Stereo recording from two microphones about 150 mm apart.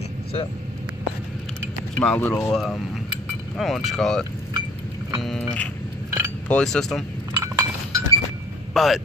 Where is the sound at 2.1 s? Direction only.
15° left (ahead or behind).